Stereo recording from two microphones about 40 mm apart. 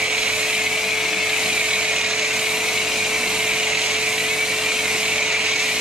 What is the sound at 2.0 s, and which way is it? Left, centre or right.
Dental drill, centre.